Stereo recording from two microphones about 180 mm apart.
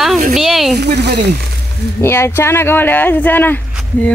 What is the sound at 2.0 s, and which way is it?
Speech, 15° left (ahead or behind).